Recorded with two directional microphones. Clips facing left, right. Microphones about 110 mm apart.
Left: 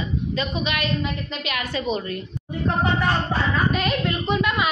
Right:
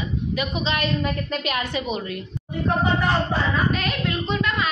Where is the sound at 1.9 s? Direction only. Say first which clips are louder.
Left 2 dB; 5° right (ahead or behind).